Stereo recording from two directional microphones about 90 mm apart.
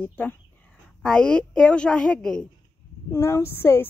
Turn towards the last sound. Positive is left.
turn(degrees=30)  # may be behind; listen again after turning